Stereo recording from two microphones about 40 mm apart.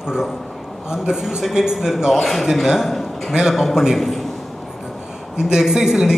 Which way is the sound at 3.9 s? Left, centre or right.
Centre.